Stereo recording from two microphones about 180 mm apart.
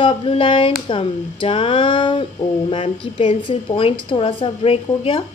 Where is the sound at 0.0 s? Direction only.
30° left (ahead or behind).